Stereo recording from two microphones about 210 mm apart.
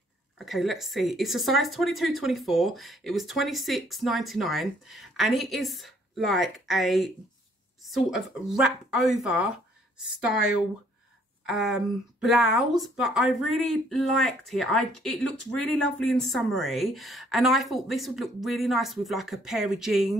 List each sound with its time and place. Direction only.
0.4 s speech: centre (ahead or behind)
11.4 s speech: centre (ahead or behind)